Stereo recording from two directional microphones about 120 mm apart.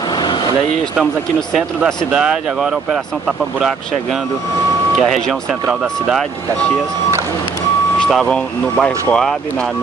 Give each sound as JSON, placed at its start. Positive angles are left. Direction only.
{"t": 0.1, "sound": "vehicle", "side_deg": 40}
{"t": 2.1, "sound": "speech", "side_deg": -5}
{"t": 8.0, "sound": "speech", "side_deg": 5}